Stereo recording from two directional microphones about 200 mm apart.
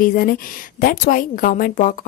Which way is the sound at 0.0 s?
45° left (ahead or behind).